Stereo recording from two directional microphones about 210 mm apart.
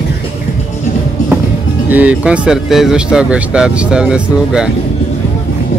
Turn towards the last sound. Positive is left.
turn(degrees=-5)  # may be behind; listen again after turning